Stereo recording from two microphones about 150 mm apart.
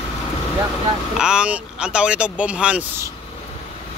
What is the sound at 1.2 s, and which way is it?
Speech, 5° right (ahead or behind).